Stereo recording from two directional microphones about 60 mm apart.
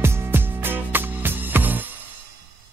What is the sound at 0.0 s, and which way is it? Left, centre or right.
Music, right.